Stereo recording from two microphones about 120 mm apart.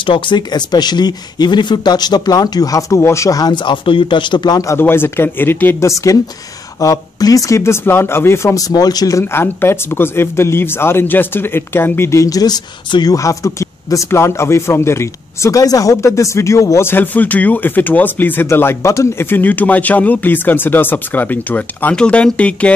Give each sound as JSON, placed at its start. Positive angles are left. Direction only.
{"t": 0.0, "sound": "speech", "side_deg": 45}